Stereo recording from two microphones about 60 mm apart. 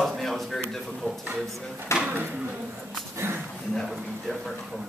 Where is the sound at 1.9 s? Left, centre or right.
Left.